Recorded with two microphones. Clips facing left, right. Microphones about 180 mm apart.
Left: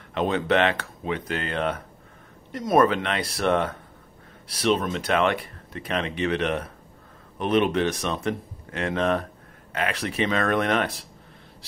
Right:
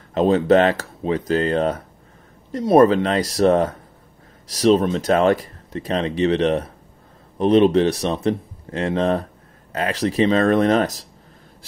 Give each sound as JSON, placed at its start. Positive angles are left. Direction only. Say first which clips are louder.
{"t": 0.1, "sound": "speech", "louder": "right 8 dB", "side_deg": -35}